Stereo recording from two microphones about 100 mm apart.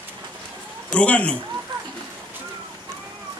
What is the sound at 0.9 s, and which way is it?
Speech, 15° left (ahead or behind).